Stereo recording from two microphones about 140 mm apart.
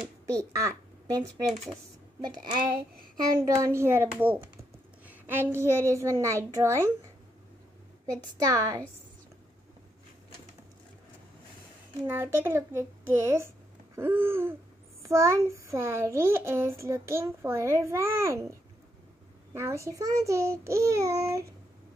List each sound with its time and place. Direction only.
0.4 s speech: 20° right (ahead or behind)
1.2 s speech: centre (ahead or behind)
3.3 s a child's voice: 25° right (ahead or behind)
8.1 s a child's voice: 25° right (ahead or behind)
12.1 s a child's voice: 15° right (ahead or behind)